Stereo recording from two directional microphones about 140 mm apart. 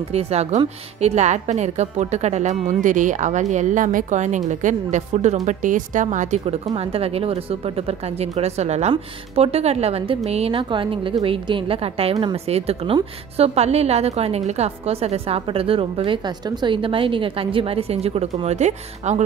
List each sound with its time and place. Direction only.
0.1 s a woman's voice: 50° right (ahead or behind)